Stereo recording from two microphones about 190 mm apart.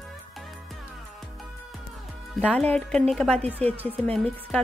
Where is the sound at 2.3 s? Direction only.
5° left (ahead or behind).